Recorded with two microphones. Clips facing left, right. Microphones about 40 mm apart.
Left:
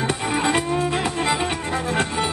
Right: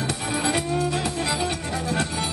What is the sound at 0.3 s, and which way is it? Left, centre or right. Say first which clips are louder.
Music: left 3 dB; left.